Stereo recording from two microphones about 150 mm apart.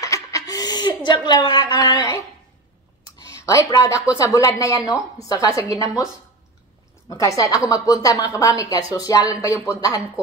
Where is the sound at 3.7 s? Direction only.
20° left (ahead or behind).